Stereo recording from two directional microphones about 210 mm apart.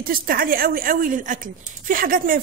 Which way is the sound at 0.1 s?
45° right (ahead or behind).